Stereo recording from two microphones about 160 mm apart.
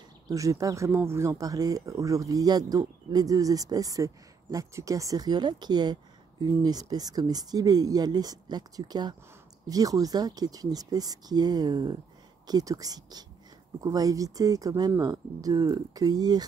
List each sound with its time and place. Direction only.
0.3 s speech: 20° right (ahead or behind)